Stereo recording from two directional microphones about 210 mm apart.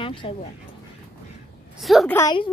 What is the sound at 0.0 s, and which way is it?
Speech, 25° left (ahead or behind).